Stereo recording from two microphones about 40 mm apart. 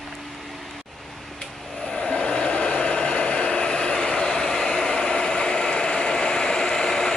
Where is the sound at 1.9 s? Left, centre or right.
Left.